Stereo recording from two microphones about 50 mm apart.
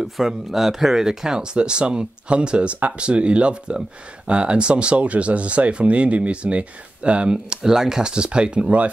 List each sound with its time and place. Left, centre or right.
0.0 s speech: centre